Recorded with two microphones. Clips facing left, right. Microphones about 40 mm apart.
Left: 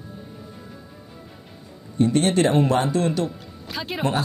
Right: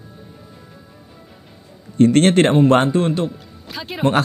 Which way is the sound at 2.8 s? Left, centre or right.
Right.